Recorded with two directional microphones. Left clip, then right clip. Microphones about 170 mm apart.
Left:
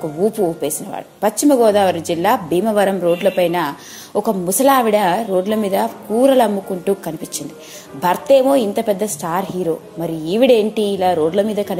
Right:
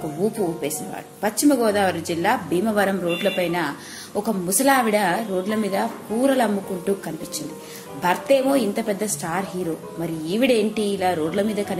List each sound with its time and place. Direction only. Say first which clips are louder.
0.2 s a woman's voice: left 6 dB; 40° left (ahead or behind)